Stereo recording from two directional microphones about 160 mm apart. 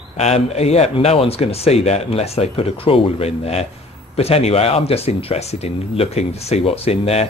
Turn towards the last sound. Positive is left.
turn(degrees=40)  # may be behind; listen again after turning